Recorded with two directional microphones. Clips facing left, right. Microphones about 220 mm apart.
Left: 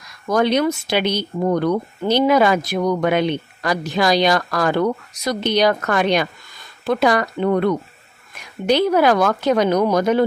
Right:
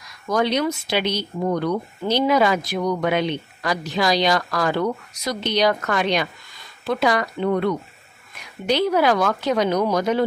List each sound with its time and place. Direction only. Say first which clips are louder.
0.3 s speech: left 4 dB; 55° left (ahead or behind)